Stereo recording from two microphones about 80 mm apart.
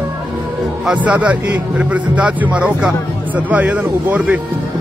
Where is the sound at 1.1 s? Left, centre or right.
Centre.